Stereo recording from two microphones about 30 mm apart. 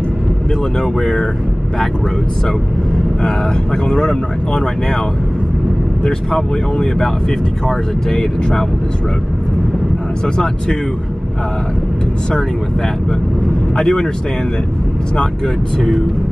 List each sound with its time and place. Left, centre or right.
0.7 s speech: centre
3.2 s speech: left
6.0 s speech: centre
10.3 s speech: left
13.7 s speech: left